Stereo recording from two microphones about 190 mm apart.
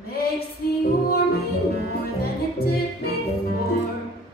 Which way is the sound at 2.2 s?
55° left (ahead or behind).